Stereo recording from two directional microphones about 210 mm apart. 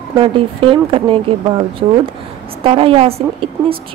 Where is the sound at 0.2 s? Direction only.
25° right (ahead or behind).